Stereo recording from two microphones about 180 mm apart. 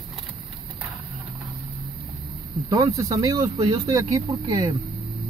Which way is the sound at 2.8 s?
20° right (ahead or behind).